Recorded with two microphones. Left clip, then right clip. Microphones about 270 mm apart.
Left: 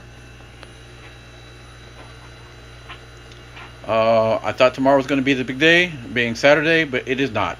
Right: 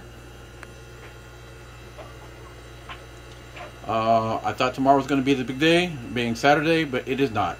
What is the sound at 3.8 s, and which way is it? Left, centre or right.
Speech, centre.